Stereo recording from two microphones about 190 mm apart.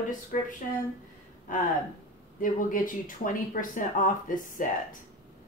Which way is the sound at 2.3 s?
45° left (ahead or behind).